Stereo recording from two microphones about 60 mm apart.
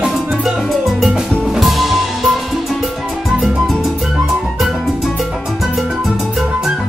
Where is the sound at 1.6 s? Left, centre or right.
Centre.